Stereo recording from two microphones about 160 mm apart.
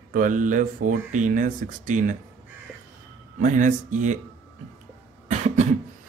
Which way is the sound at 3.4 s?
55° right (ahead or behind).